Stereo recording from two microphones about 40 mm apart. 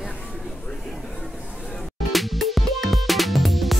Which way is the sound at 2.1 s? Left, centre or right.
Centre.